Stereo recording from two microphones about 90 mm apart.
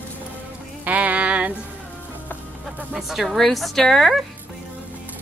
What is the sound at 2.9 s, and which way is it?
Speech, centre (ahead or behind).